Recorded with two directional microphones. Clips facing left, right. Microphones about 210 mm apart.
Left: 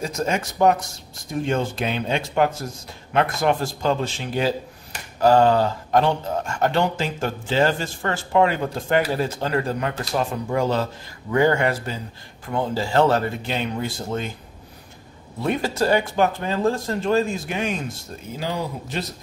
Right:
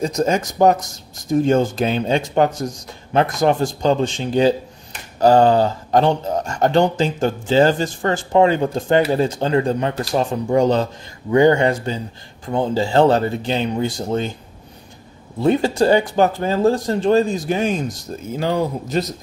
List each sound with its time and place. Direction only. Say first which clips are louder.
0.0 s speech: right 6 dB; 35° right (ahead or behind)
15.4 s speech: right 6 dB; 30° right (ahead or behind)
18.4 s speech: right 7 dB; 50° right (ahead or behind)